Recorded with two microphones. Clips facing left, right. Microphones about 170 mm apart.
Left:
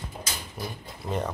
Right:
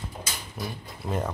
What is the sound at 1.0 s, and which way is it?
Speech, 5° right (ahead or behind).